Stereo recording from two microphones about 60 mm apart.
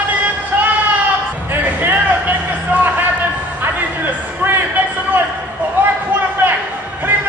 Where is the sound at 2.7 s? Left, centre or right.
Right.